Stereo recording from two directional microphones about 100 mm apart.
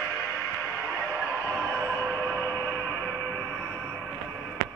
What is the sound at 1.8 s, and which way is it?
Music, 35° right (ahead or behind).